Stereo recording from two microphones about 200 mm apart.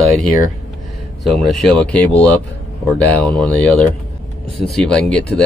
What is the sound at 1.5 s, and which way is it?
Speech, centre (ahead or behind).